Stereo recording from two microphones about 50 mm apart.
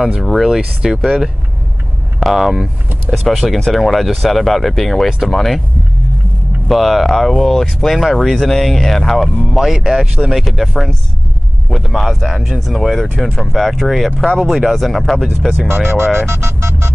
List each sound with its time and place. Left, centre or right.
0.6 s speech: centre
2.1 s speech: centre
6.7 s speech: centre
10.3 s speech: centre
14.2 s speech: centre
14.5 s speech: centre
15.7 s speech: right
16.3 s music: right